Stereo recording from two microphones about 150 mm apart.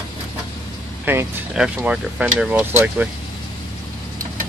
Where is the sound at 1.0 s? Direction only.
15° right (ahead or behind).